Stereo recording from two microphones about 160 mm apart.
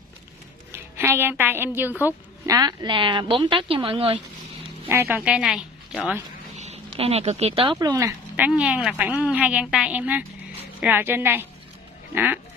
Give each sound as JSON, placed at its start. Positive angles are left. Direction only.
{"t": 0.7, "sound": "a woman's voice", "side_deg": -15}
{"t": 4.8, "sound": "a woman's voice", "side_deg": -15}
{"t": 6.5, "sound": "speech", "side_deg": -45}
{"t": 7.8, "sound": "speech", "side_deg": -20}
{"t": 8.5, "sound": "a woman's voice", "side_deg": -5}